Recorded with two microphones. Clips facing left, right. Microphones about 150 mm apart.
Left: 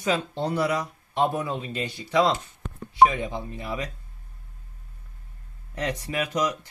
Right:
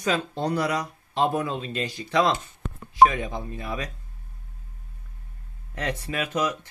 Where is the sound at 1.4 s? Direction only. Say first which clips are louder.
Right 1 dB; 15° left (ahead or behind).